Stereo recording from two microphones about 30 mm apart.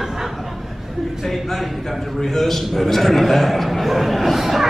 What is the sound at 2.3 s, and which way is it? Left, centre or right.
A man's voice, centre.